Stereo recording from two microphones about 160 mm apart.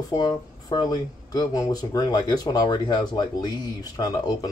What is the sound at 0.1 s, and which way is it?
Speech, 25° left (ahead or behind).